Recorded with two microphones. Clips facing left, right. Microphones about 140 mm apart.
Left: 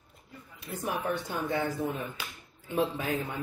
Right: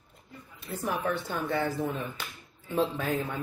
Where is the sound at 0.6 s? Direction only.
15° left (ahead or behind).